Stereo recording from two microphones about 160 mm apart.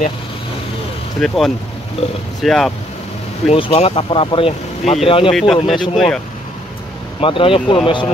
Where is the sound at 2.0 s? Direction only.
40° left (ahead or behind).